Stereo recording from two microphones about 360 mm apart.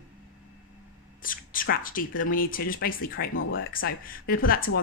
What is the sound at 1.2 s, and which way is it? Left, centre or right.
Speech, left.